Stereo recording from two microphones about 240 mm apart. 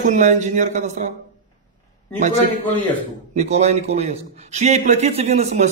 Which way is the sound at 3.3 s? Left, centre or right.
Right.